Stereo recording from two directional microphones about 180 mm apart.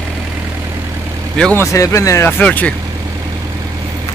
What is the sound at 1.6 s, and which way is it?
Speech, 15° left (ahead or behind).